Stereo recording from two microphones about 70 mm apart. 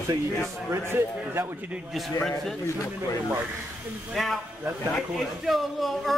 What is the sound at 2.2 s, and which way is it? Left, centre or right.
Speech, centre.